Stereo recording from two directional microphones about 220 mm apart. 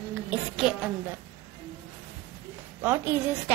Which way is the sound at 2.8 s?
10° right (ahead or behind).